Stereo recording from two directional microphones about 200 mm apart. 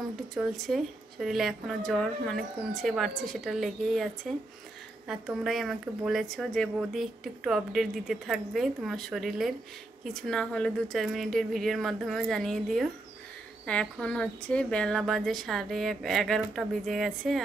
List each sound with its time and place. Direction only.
0.3 s speech: centre (ahead or behind)